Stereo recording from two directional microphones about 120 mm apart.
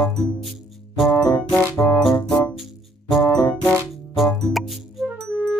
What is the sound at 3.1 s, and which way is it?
Music, 30° left (ahead or behind).